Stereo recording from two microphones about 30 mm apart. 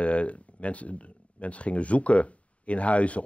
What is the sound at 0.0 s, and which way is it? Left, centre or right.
Speech, left.